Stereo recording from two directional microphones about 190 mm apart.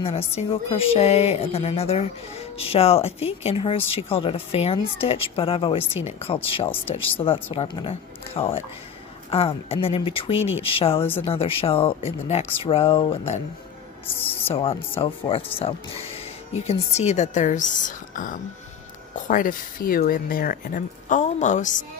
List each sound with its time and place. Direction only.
0.0 s speech: 30° left (ahead or behind)
14.5 s speech: 30° left (ahead or behind)